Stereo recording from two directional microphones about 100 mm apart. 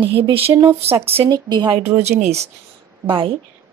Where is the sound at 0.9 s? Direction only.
25° right (ahead or behind).